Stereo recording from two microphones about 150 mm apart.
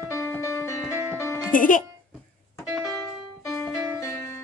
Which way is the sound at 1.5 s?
65° left (ahead or behind).